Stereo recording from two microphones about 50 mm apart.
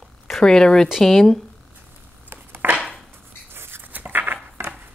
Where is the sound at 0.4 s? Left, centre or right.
Centre.